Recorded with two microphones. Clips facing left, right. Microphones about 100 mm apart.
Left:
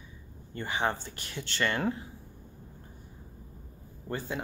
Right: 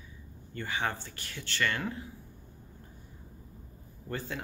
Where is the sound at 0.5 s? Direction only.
25° left (ahead or behind).